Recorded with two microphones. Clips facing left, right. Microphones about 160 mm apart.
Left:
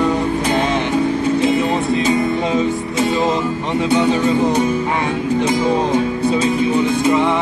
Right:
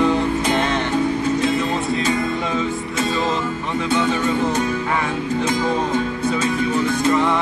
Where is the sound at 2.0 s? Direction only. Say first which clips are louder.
Left 4 dB; 25° left (ahead or behind).